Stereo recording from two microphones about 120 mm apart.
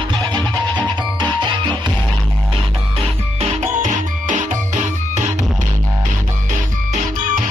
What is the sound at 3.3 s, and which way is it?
Music, 70° right (ahead or behind).